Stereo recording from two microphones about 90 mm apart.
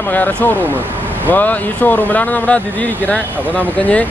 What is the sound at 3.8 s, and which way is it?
Speech, 15° left (ahead or behind).